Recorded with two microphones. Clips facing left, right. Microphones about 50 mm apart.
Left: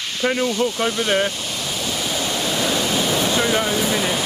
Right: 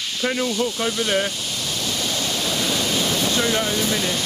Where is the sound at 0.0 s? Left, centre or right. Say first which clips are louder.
Left 3 dB; centre.